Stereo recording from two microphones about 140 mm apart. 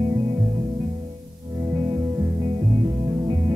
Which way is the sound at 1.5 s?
35° right (ahead or behind).